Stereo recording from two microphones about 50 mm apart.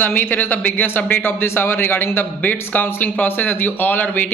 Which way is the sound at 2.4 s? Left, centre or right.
Left.